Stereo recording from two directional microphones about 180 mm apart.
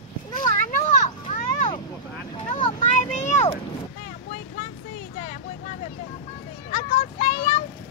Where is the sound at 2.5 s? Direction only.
40° left (ahead or behind).